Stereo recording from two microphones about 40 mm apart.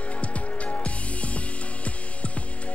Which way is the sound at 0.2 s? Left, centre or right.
Left.